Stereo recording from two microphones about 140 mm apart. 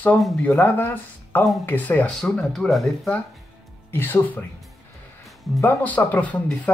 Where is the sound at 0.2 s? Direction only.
10° left (ahead or behind).